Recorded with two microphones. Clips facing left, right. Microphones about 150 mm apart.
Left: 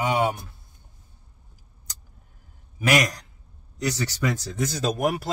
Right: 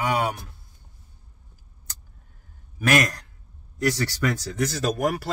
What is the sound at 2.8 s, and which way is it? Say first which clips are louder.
A man's voice: even; 15° left (ahead or behind).